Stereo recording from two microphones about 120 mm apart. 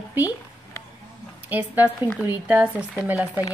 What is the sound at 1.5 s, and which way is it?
Speech, 15° right (ahead or behind).